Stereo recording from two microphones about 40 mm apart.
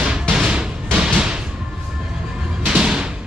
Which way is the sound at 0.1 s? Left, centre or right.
Centre.